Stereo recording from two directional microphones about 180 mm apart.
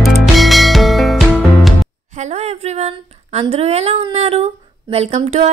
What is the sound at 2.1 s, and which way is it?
A woman's voice, 40° right (ahead or behind).